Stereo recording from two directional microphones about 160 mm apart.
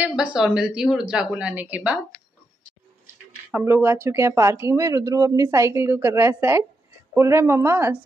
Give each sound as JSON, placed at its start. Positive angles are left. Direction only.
{"t": 0.0, "sound": "speech", "side_deg": -5}
{"t": 3.5, "sound": "speech", "side_deg": -15}